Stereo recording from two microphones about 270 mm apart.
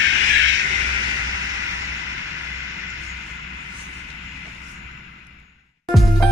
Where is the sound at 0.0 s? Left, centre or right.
Right.